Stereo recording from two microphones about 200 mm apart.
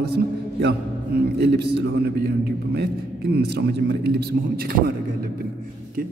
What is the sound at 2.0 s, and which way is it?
A man's voice, 55° right (ahead or behind).